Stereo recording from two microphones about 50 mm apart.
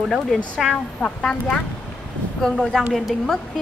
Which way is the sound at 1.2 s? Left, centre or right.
Centre.